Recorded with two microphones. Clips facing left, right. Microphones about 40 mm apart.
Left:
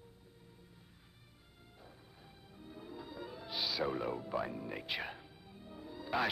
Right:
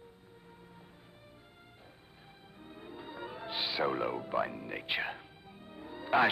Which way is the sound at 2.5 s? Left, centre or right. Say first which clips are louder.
Right 1 dB; right.